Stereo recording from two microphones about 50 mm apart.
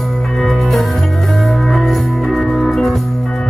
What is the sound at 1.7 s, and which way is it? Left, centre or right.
Music, centre.